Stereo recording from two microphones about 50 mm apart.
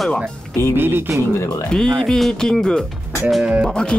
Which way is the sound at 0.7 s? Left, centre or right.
Right.